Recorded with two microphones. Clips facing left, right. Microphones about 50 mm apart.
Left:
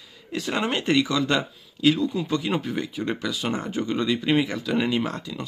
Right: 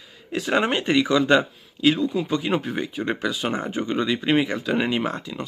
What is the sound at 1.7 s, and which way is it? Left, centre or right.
Speech, centre.